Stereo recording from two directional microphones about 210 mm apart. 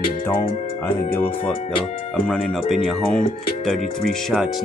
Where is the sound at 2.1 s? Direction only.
5° left (ahead or behind).